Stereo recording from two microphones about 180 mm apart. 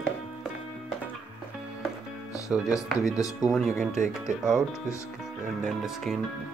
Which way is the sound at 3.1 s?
20° left (ahead or behind).